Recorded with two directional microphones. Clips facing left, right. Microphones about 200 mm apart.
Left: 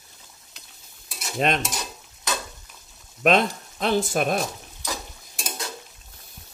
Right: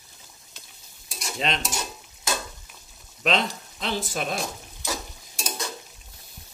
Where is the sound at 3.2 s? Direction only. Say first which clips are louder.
Left 5 dB; 50° left (ahead or behind).